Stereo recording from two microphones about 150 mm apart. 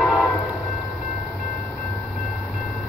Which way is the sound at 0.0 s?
5° left (ahead or behind).